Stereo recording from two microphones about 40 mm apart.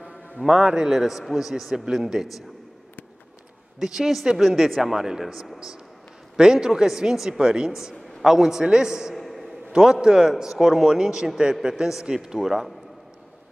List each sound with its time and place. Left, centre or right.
0.5 s a man's voice: centre
3.8 s a man's voice: centre
4.4 s speech: centre
5.2 s speech: centre
6.3 s a man's voice: centre
9.1 s a sound: centre
10.0 s a man's voice: centre